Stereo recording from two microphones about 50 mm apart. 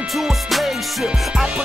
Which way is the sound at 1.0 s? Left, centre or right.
Centre.